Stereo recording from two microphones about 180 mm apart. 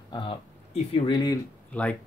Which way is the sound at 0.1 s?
30° left (ahead or behind).